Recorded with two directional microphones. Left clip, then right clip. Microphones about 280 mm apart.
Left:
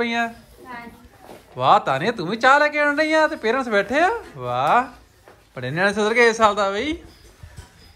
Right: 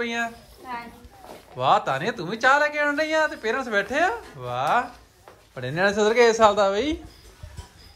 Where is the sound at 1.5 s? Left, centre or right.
Centre.